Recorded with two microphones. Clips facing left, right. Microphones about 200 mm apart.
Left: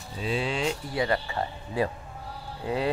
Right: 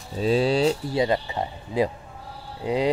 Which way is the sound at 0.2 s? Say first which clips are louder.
Right 8 dB; 40° right (ahead or behind).